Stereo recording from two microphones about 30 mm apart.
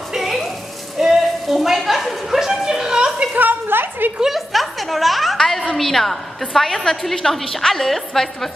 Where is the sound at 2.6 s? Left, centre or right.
Right.